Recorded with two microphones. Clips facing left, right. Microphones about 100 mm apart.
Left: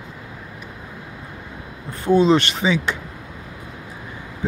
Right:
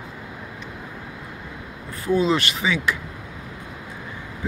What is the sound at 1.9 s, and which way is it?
Speech, 25° left (ahead or behind).